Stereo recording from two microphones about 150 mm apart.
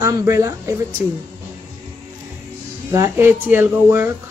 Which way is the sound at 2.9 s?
20° right (ahead or behind).